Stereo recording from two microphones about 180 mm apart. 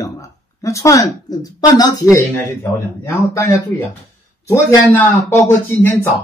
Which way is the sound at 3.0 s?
15° left (ahead or behind).